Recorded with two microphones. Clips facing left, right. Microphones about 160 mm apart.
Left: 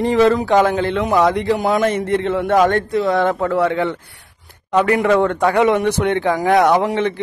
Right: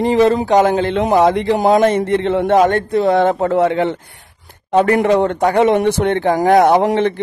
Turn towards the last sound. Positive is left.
turn(degrees=-30)  # may be behind; listen again after turning